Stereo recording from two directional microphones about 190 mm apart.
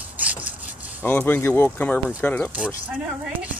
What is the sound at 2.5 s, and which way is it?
Speech, 10° right (ahead or behind).